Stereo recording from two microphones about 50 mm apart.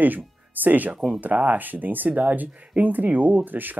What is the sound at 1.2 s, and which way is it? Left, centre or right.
Speech, right.